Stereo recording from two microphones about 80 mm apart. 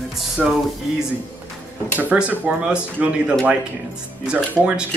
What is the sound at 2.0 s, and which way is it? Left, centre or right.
Speech, centre.